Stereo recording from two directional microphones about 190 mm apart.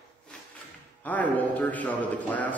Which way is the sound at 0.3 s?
5° left (ahead or behind).